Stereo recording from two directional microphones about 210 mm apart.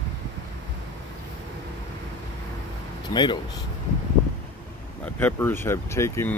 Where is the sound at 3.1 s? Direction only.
20° left (ahead or behind).